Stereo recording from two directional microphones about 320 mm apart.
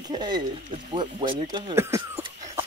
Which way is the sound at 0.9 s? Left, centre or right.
Centre.